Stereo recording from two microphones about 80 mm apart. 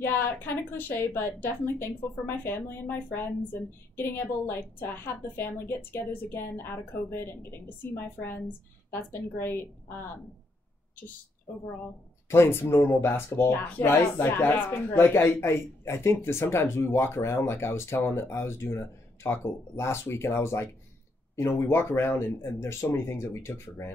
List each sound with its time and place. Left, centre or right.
0.7 s a woman's voice: left
12.3 s speech: left